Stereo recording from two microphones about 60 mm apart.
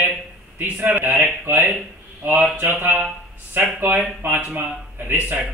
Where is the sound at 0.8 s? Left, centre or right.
Right.